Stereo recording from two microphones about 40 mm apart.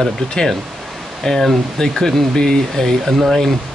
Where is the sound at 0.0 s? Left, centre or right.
Centre.